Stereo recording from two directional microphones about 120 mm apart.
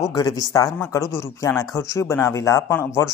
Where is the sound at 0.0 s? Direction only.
30° left (ahead or behind).